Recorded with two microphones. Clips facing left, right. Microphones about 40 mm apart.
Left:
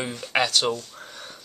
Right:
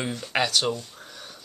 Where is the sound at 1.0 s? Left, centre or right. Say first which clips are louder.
Left 2 dB; centre.